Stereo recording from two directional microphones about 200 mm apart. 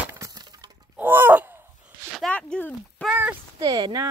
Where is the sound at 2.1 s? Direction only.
Centre (ahead or behind).